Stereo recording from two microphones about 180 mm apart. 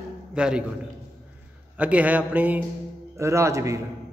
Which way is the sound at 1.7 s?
5° right (ahead or behind).